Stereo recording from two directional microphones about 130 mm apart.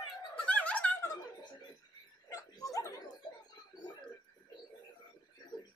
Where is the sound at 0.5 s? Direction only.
10° left (ahead or behind).